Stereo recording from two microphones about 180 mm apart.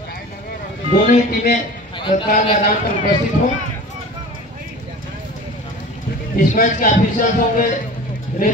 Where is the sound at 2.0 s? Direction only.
25° left (ahead or behind).